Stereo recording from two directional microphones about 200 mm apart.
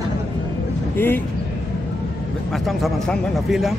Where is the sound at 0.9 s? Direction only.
10° left (ahead or behind).